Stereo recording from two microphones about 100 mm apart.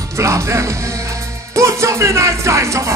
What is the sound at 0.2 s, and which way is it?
Speech, 30° right (ahead or behind).